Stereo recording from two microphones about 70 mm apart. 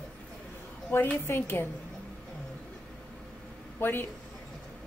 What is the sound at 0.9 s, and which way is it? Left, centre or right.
Speech, left.